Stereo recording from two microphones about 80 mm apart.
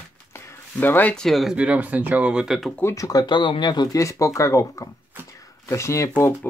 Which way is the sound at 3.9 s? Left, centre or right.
Left.